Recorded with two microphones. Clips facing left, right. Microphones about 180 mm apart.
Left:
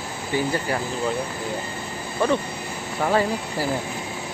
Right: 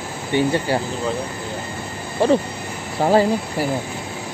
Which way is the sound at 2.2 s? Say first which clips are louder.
Right 5 dB; 30° right (ahead or behind).